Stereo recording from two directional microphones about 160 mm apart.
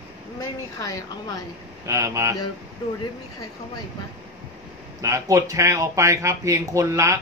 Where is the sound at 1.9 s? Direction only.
20° right (ahead or behind).